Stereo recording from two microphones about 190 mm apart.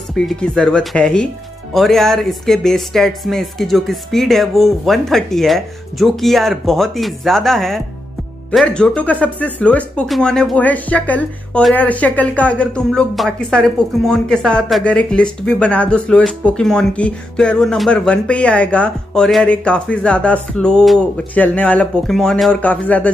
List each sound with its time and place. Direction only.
0.1 s speech: 5° left (ahead or behind)